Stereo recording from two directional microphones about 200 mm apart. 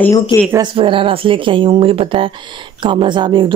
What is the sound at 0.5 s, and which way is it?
Speech, 25° right (ahead or behind).